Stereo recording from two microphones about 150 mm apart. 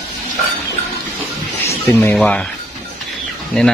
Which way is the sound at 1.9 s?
10° left (ahead or behind).